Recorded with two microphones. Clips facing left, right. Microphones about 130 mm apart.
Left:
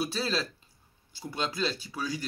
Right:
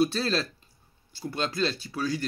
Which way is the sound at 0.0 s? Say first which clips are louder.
Right 5 dB; 10° left (ahead or behind).